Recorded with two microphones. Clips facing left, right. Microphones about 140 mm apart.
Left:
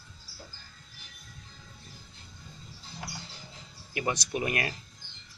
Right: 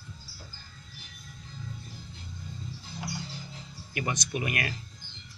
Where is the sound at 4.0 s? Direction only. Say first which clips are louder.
Left 1 dB; 30° left (ahead or behind).